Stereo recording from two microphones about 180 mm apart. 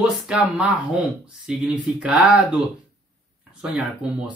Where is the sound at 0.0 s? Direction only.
5° right (ahead or behind).